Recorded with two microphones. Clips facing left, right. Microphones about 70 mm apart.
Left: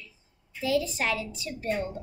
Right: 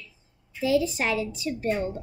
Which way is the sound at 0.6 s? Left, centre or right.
Centre.